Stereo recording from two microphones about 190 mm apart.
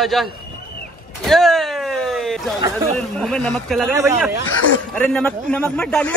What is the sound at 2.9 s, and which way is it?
Speech, 5° left (ahead or behind).